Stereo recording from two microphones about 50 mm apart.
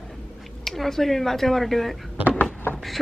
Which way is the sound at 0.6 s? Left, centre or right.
Centre.